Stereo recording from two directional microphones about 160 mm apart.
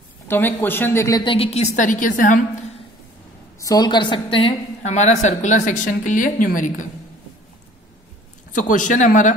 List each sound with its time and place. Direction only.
0.3 s speech: 10° left (ahead or behind)
1.2 s a woman's voice: 35° left (ahead or behind)
1.8 s a woman's voice: 55° left (ahead or behind)
3.5 s a woman's voice: 20° left (ahead or behind); by 6.9 s 55° left (ahead or behind)
8.5 s a woman's voice: 55° left (ahead or behind)